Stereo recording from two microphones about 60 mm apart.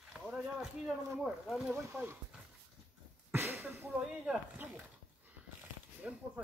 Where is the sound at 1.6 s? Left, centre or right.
Right.